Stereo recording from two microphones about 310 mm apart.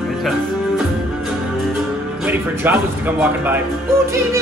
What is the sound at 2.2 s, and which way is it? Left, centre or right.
Speech, centre.